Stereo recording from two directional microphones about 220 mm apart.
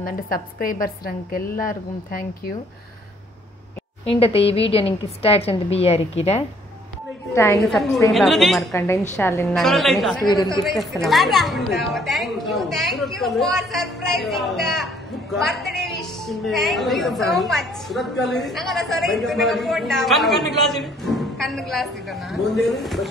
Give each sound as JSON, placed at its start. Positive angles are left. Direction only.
{"t": 0.0, "sound": "a woman's voice", "side_deg": 40}
{"t": 4.0, "sound": "a woman's voice", "side_deg": 25}
{"t": 7.3, "sound": "a woman's voice", "side_deg": 10}
{"t": 8.1, "sound": "a woman's voice", "side_deg": 0}
{"t": 8.7, "sound": "a woman's voice", "side_deg": 10}
{"t": 9.6, "sound": "a woman's voice", "side_deg": 0}